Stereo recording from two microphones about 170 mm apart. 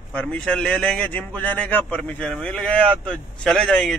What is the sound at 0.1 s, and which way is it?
A man's voice, 5° left (ahead or behind).